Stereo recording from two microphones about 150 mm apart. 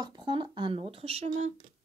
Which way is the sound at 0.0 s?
30° right (ahead or behind).